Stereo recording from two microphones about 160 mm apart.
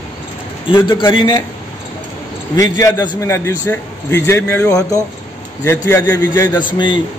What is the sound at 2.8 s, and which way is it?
A man's voice, 20° left (ahead or behind).